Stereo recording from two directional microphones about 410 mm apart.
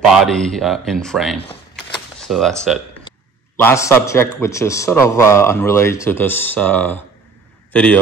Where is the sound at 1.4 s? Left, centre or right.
Centre.